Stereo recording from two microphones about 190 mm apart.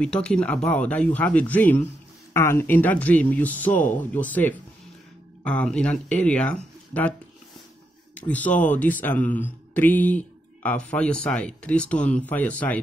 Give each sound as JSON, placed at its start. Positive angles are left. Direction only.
{"t": 0.0, "sound": "speech", "side_deg": 5}